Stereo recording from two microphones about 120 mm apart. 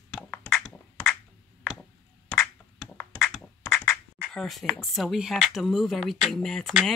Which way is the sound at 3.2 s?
Centre (ahead or behind).